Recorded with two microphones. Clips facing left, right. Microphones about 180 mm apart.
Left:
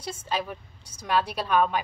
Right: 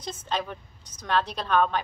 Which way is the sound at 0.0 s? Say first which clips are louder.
Even; 10° left (ahead or behind).